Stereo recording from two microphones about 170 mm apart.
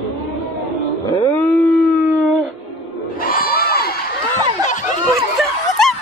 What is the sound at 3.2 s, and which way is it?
Crowd, 60° left (ahead or behind).